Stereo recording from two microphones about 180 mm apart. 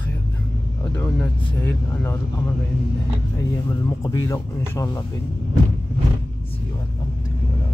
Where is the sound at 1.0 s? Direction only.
10° left (ahead or behind).